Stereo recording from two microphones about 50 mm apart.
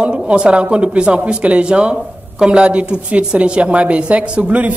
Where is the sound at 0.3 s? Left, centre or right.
Right.